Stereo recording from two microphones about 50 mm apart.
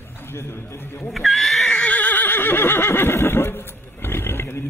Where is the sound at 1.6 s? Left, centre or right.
Left.